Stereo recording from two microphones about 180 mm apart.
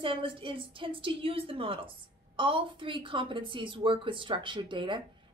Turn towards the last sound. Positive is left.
turn(degrees=-25)  # may be behind; listen again after turning